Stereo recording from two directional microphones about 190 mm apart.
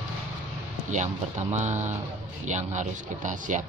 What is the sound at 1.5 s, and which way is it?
Speech, 40° right (ahead or behind).